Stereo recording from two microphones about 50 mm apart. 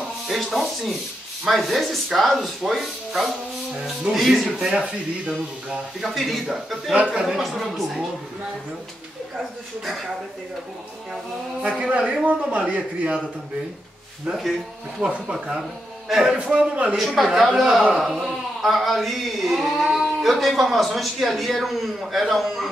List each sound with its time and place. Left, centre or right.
0.3 s speech: centre
1.5 s singing: centre
4.6 s speech: centre
6.0 s singing: centre
7.0 s a man's voice: centre
7.2 s singing: centre
11.8 s a man's voice: right
15.0 s a man's voice: centre
16.5 s a man's voice: right
16.9 s speech: centre
17.9 s singing: centre